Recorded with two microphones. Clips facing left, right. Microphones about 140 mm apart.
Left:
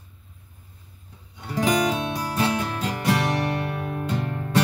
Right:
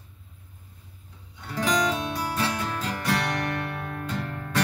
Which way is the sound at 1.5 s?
20° left (ahead or behind).